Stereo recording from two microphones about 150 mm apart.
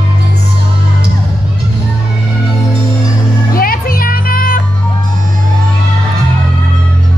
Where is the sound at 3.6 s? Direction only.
75° left (ahead or behind).